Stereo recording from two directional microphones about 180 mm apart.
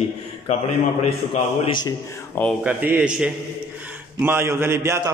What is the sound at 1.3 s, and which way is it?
Speech, 35° left (ahead or behind).